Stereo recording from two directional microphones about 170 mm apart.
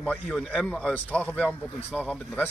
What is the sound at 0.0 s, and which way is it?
Speech, 5° left (ahead or behind).